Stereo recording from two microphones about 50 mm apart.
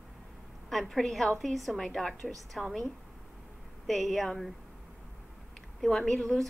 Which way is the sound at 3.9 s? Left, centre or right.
Centre.